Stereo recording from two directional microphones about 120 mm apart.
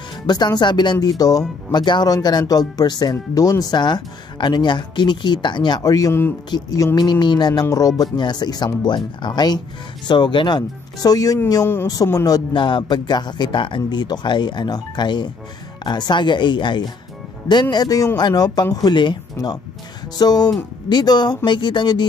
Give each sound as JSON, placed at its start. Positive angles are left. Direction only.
{"t": 0.3, "sound": "speech", "side_deg": 35}